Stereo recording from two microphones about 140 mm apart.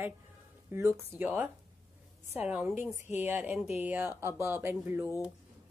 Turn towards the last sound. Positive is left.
turn(degrees=-15)  # may be behind; listen again after turning